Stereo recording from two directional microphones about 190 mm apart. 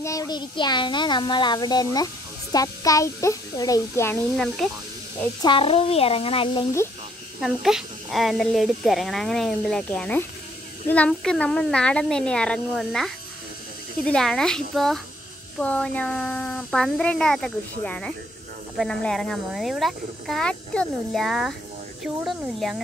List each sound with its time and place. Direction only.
0.0 s a child's voice: 15° left (ahead or behind)
4.6 s speech: centre (ahead or behind)
5.4 s a child's voice: 25° left (ahead or behind)
7.3 s speech: centre (ahead or behind)